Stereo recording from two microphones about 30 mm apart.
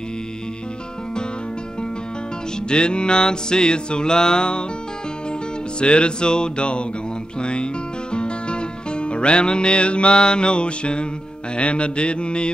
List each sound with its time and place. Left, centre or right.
2.7 s music: left
5.8 s music: left
7.3 s speech: left
11.5 s music: left